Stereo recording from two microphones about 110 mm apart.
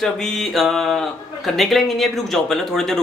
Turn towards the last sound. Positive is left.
turn(degrees=5)  # may be behind; listen again after turning